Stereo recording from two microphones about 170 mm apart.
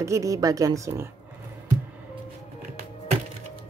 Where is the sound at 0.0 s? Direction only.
20° right (ahead or behind).